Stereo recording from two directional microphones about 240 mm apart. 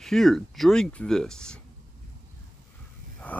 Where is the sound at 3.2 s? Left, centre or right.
Centre.